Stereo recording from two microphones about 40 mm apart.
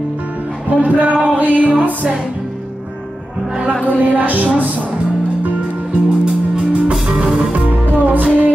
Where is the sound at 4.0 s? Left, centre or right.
Right.